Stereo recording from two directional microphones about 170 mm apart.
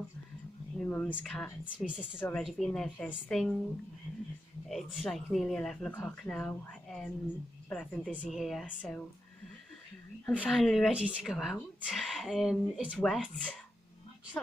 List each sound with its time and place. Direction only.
0.7 s speech: 10° left (ahead or behind)
1.6 s speech: 5° right (ahead or behind)
2.1 s speech: 10° left (ahead or behind)
2.4 s speech: centre (ahead or behind)
4.6 s speech: centre (ahead or behind)
10.2 s a woman's voice: 10° left (ahead or behind)